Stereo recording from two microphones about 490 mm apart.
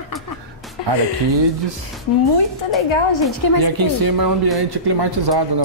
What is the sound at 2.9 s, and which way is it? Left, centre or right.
Speech, left.